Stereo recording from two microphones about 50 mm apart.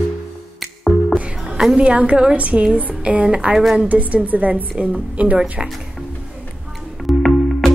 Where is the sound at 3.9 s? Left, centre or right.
Right.